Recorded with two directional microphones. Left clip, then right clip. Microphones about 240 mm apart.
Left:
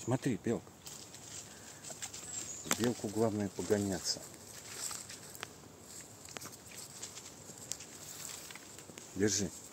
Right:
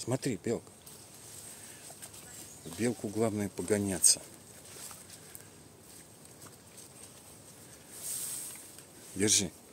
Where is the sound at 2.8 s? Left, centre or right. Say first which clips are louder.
Right 4 dB; right.